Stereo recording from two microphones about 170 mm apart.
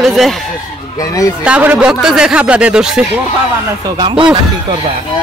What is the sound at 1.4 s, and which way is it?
Speech, 10° right (ahead or behind).